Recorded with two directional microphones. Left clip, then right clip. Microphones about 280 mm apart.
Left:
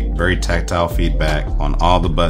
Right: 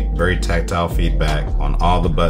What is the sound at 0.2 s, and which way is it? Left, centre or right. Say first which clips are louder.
Speech: left 1 dB; left.